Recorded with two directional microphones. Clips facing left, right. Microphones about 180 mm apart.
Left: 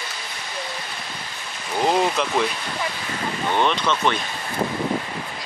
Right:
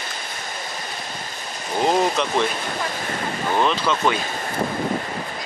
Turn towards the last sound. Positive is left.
turn(degrees=-5)  # may be behind; listen again after turning